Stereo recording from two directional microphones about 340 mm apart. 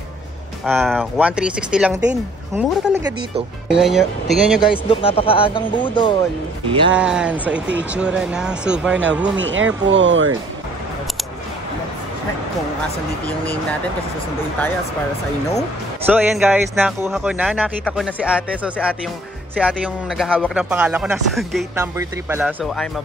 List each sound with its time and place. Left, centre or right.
0.7 s speech: centre
4.8 s speech: centre
7.0 s speech: centre
9.4 s speech: right
16.1 s speech: centre